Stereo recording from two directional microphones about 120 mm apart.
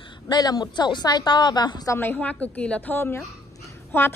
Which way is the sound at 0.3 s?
35° left (ahead or behind).